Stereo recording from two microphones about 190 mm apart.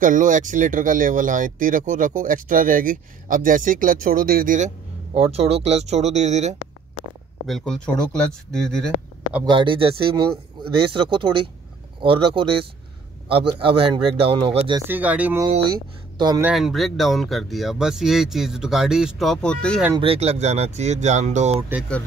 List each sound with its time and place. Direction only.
0.0 s speech: 40° right (ahead or behind)
5.3 s speech: 30° right (ahead or behind)
7.4 s speech: centre (ahead or behind)
9.4 s speech: 25° right (ahead or behind)
14.9 s speech: 10° right (ahead or behind)
15.4 s speech: 25° right (ahead or behind)
16.4 s speech: centre (ahead or behind)
20.0 s speech: 30° right (ahead or behind)